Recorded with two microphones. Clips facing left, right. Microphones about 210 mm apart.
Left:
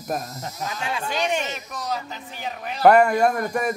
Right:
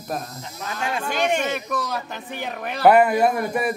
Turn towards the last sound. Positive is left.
turn(degrees=-5)  # may be behind; listen again after turning